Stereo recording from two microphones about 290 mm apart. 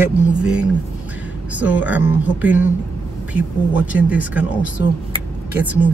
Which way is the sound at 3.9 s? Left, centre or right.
Centre.